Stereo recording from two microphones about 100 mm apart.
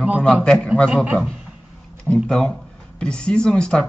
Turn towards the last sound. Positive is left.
turn(degrees=10)  # may be behind; listen again after turning